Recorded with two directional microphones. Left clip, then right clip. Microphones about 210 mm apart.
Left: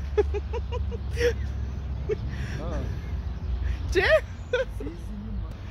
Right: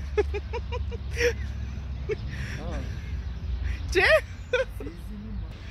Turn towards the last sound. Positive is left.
turn(degrees=-25)  # may be behind; listen again after turning